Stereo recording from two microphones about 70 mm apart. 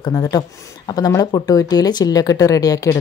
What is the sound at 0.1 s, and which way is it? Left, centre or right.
Speech, left.